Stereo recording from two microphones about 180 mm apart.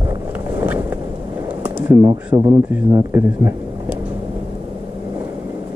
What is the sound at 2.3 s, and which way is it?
Speech, 25° right (ahead or behind).